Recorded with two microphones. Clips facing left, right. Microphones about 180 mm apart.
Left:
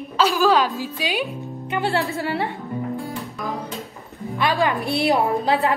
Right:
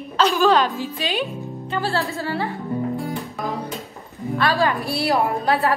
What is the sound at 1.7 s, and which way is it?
Speech, 20° left (ahead or behind).